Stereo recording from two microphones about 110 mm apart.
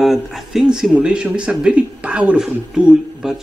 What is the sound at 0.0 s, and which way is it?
Speech, centre (ahead or behind).